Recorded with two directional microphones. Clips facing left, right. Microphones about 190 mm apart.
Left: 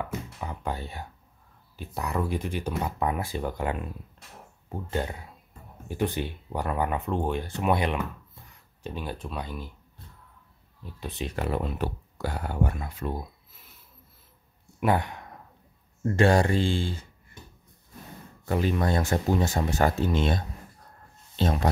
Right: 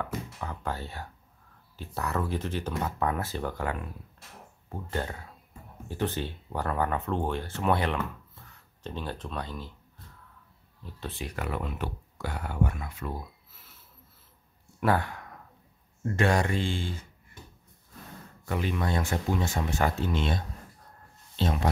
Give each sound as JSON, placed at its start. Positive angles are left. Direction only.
{"t": 0.0, "sound": "speech", "side_deg": 15}
{"t": 11.0, "sound": "speech", "side_deg": 20}
{"t": 14.8, "sound": "speech", "side_deg": 20}
{"t": 16.2, "sound": "speech", "side_deg": 35}
{"t": 18.4, "sound": "speech", "side_deg": 35}